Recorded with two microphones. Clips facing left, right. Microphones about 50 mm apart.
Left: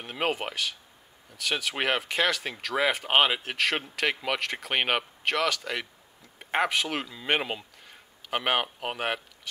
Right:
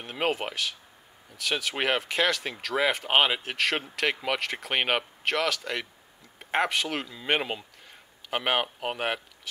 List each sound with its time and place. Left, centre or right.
0.0 s speech: centre